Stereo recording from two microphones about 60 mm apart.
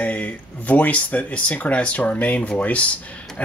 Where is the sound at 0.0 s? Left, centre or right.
Left.